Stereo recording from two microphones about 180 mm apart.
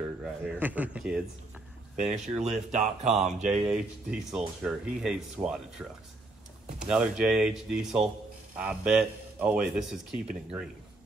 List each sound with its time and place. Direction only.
0.2 s speech: 5° right (ahead or behind)
2.0 s speech: 40° right (ahead or behind)
3.6 s speech: 5° right (ahead or behind)
6.9 s speech: 5° right (ahead or behind)